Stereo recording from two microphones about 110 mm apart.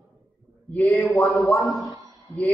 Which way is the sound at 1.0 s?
Centre (ahead or behind).